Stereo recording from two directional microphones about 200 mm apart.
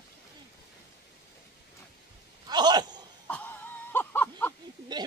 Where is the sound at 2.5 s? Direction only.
20° right (ahead or behind).